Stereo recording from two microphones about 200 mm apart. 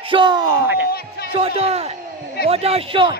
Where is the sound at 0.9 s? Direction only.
50° left (ahead or behind).